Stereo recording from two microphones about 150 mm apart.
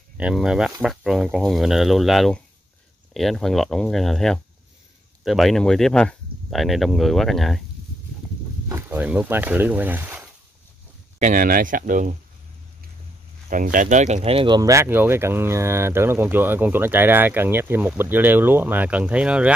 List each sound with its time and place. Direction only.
0.2 s speech: 5° right (ahead or behind)
8.6 s speech: 15° right (ahead or behind)
11.1 s speech: 60° right (ahead or behind)
13.5 s speech: 65° right (ahead or behind); by 14.6 s 35° right (ahead or behind)
14.6 s speech: 20° right (ahead or behind)